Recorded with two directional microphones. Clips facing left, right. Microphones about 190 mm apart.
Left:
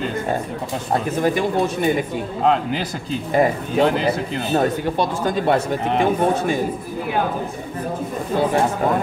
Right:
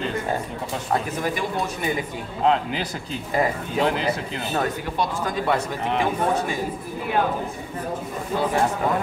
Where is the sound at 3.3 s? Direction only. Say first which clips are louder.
Left 5 dB; 25° left (ahead or behind).